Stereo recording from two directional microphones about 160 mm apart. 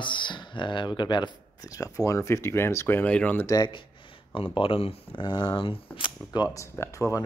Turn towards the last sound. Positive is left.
turn(degrees=20)  # may be behind; listen again after turning